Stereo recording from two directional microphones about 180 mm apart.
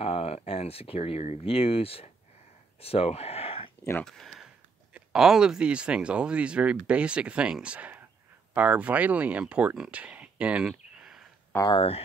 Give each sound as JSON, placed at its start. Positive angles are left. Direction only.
{"t": 0.0, "sound": "speech", "side_deg": 35}
{"t": 4.0, "sound": "speech", "side_deg": 0}
{"t": 11.5, "sound": "speech", "side_deg": 25}